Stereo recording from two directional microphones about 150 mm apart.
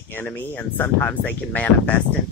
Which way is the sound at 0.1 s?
15° left (ahead or behind).